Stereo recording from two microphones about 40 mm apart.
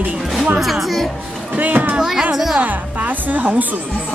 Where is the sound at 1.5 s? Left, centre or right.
Right.